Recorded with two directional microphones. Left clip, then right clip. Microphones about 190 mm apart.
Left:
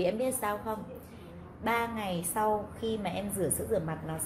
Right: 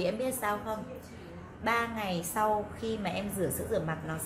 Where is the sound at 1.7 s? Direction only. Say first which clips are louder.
Right 1 dB; 30° left (ahead or behind).